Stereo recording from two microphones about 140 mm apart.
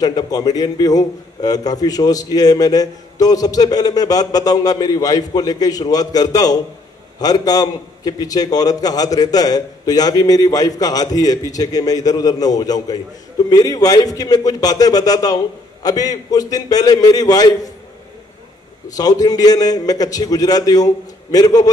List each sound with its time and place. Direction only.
0.0 s a man's voice: 30° left (ahead or behind)
18.9 s a man's voice: 25° left (ahead or behind)